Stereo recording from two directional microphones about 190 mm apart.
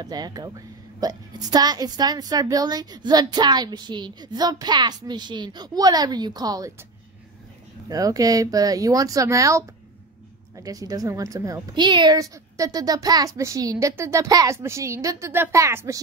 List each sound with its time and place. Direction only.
0.0 s a woman's voice: 20° right (ahead or behind)
7.9 s a woman's voice: 20° right (ahead or behind)